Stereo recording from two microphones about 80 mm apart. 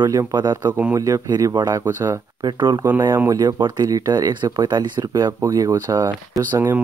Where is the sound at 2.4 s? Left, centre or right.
Right.